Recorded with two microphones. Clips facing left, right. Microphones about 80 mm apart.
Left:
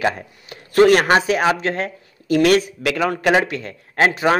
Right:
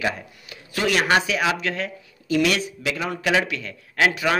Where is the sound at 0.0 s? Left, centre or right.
Left.